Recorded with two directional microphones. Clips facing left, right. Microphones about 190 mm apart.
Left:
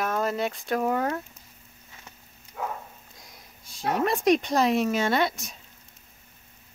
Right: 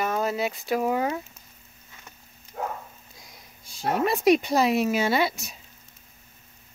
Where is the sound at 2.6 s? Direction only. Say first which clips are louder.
Right 1 dB; 40° right (ahead or behind).